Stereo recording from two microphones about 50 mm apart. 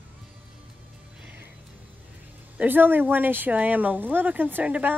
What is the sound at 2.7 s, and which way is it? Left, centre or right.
Speech, right.